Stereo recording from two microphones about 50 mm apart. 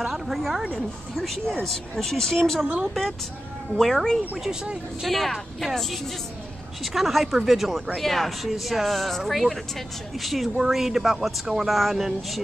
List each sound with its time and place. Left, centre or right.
0.0 s speech: centre
2.6 s speech: right
2.9 s speech: centre
4.4 s speech: centre
5.0 s speech: centre
6.8 s speech: centre